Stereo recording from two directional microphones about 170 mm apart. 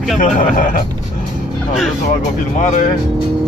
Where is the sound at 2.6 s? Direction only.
50° left (ahead or behind).